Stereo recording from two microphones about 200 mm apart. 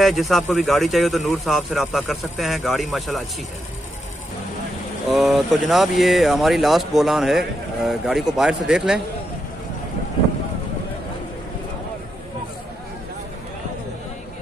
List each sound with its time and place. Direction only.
0.0 s speech: centre (ahead or behind)
5.0 s speech: centre (ahead or behind)